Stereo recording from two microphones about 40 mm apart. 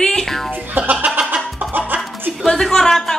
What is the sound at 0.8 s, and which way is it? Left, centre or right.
Speech, right.